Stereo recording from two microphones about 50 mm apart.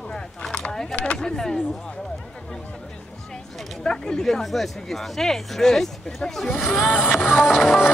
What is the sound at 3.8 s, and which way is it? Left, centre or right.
Speech, centre.